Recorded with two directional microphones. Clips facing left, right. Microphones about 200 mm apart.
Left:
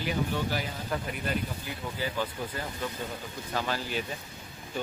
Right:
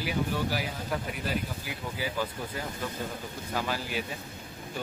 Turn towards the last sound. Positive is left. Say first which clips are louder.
# even
turn(degrees=-10)  # may be behind; listen again after turning